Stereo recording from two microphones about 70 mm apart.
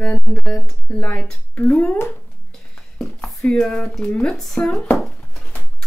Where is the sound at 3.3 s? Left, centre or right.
Centre.